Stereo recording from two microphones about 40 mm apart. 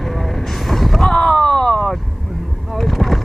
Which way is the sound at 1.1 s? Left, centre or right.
Centre.